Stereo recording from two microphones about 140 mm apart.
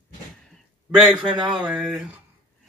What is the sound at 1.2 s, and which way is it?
Speech, 35° right (ahead or behind).